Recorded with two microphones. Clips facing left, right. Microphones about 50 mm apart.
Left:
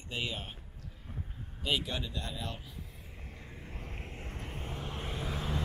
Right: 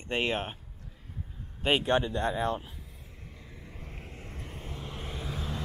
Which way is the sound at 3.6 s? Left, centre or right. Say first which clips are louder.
Left 1 dB; left.